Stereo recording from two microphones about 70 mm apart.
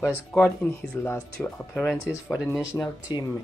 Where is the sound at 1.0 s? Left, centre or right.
Left.